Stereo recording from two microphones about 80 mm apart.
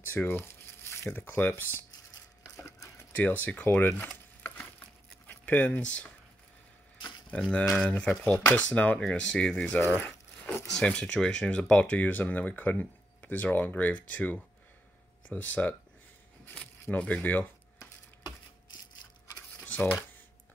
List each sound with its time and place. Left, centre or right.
0.1 s speech: left
2.5 s a sound: left
3.1 s speech: left
5.2 s speech: left
7.6 s speech: centre
9.9 s a sound: left
10.7 s speech: centre
16.8 s speech: centre
19.3 s a sound: centre